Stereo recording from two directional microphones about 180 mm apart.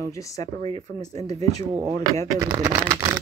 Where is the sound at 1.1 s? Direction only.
35° right (ahead or behind).